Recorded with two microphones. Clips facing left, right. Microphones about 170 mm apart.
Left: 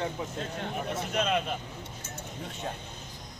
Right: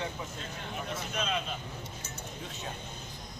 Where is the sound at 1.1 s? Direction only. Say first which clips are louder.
Left 6 dB; 60° left (ahead or behind).